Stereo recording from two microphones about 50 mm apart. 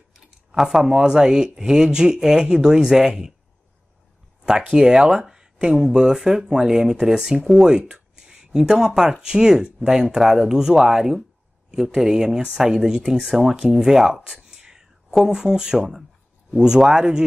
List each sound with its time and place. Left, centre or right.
0.1 s speech: centre
4.5 s speech: centre